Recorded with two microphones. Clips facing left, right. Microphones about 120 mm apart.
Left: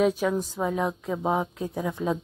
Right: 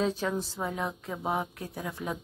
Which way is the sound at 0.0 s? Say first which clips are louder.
Left 6 dB; 10° left (ahead or behind).